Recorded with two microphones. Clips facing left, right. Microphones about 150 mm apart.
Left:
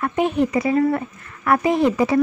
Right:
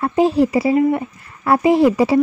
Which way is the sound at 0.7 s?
20° right (ahead or behind).